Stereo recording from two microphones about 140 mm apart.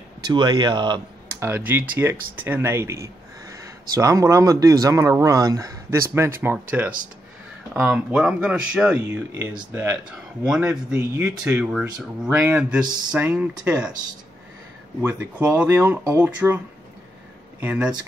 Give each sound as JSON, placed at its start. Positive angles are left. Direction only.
{"t": 0.3, "sound": "speech", "side_deg": -30}
{"t": 1.5, "sound": "speech", "side_deg": -15}
{"t": 15.0, "sound": "speech", "side_deg": -10}